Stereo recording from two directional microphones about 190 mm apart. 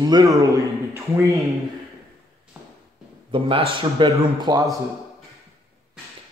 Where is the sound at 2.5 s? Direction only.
5° right (ahead or behind).